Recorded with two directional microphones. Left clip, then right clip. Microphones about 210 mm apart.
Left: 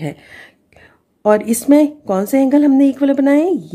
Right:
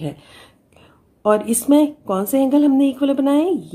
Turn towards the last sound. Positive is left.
turn(degrees=25)  # may be behind; listen again after turning